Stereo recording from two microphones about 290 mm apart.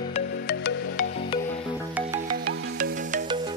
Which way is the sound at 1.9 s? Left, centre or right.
Centre.